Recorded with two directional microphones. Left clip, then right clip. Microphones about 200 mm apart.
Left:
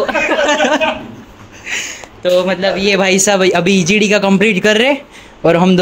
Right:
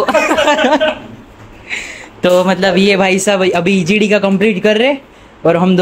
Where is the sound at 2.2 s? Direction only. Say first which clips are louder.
Right 2 dB; 30° right (ahead or behind).